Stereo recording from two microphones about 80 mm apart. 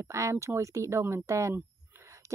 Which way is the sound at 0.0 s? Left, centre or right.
Right.